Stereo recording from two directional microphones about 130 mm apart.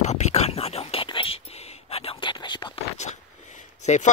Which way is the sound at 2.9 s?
65° left (ahead or behind).